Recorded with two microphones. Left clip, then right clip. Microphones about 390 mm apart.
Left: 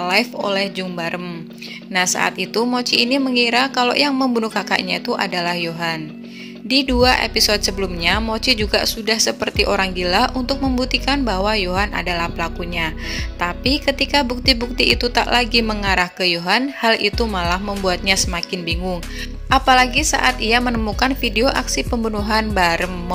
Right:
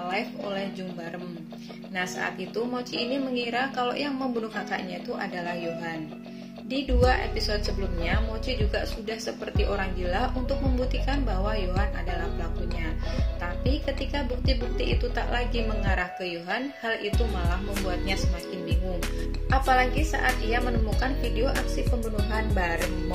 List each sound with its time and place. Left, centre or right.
0.0 s speech: left